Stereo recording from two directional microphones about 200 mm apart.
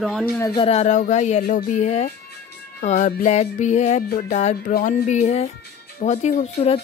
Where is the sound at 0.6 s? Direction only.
30° left (ahead or behind).